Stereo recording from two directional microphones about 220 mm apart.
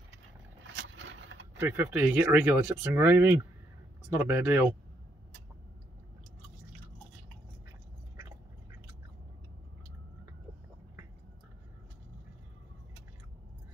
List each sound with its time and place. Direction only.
0.7 s vehicle: 60° right (ahead or behind)
1.6 s speech: 10° right (ahead or behind)